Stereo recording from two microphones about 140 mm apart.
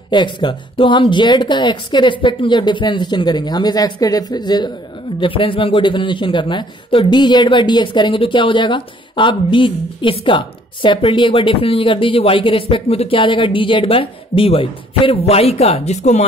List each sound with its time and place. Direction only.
0.1 s a man's voice: 35° left (ahead or behind); by 16.3 s 55° left (ahead or behind)